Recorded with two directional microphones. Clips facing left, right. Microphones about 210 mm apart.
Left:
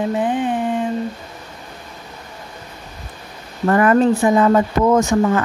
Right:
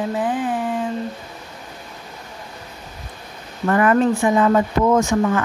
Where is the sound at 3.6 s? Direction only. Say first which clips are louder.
Left 2 dB; 40° left (ahead or behind).